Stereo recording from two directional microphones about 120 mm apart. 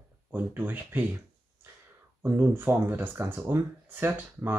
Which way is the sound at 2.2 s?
15° right (ahead or behind).